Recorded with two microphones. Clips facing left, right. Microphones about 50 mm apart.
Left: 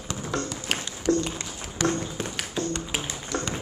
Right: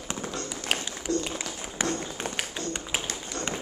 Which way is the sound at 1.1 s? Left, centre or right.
Left.